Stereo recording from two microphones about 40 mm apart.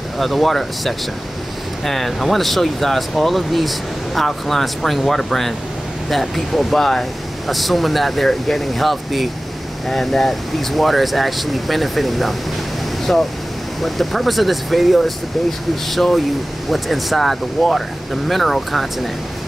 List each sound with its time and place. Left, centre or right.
0.2 s speech: centre
13.1 s speech: centre
13.7 s speech: centre